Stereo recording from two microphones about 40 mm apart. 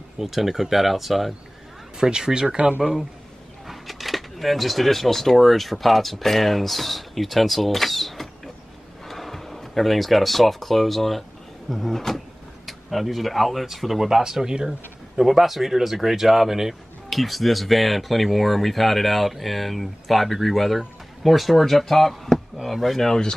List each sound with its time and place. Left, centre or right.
0.2 s speech: centre
2.0 s speech: centre
3.6 s speech: centre
15.1 s speech: centre